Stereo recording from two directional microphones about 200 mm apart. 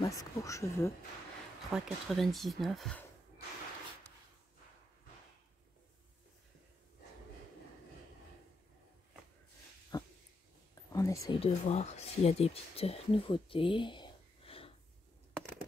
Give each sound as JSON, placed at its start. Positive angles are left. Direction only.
{"t": 0.0, "sound": "speech", "side_deg": 15}
{"t": 1.7, "sound": "speech", "side_deg": 0}
{"t": 9.9, "sound": "dog", "side_deg": 20}
{"t": 10.7, "sound": "whispering", "side_deg": 15}
{"t": 11.3, "sound": "speech", "side_deg": 30}